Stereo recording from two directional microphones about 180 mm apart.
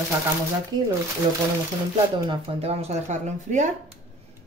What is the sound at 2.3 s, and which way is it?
Speech, 35° right (ahead or behind).